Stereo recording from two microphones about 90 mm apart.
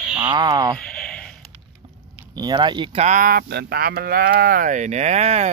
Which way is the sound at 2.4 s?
55° right (ahead or behind).